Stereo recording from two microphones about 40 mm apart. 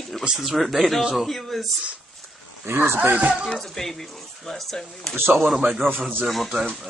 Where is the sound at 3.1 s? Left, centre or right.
Right.